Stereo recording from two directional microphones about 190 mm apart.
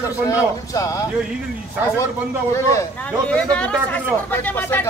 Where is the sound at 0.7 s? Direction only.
15° left (ahead or behind).